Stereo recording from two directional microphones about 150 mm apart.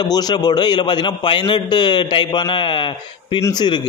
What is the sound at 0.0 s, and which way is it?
A man's voice, 25° left (ahead or behind).